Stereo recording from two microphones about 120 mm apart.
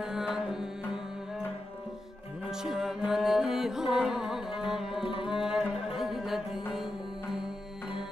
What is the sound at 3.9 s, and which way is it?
Carnatic music, 5° right (ahead or behind).